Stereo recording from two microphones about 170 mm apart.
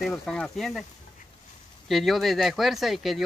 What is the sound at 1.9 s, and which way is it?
Speech, centre (ahead or behind).